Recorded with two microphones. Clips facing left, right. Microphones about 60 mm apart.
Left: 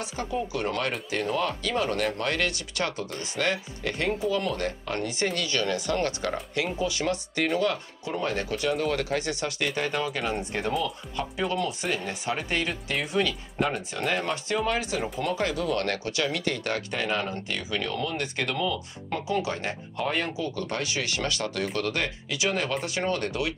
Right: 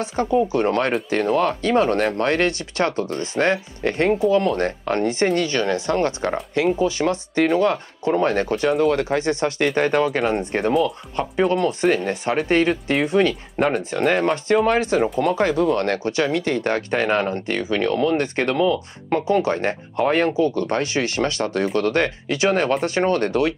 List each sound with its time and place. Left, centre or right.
0.0 s speech: right
15.4 s speech: right
18.6 s speech: right